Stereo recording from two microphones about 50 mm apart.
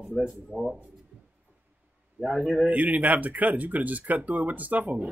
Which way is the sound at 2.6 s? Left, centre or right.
Right.